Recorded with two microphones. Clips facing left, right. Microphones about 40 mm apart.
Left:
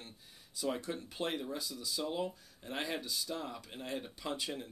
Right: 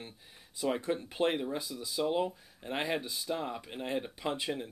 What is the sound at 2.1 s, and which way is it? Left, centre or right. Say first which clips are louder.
Speech: right 6 dB; right.